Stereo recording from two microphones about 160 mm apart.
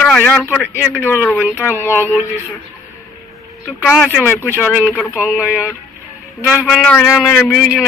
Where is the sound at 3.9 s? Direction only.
5° right (ahead or behind).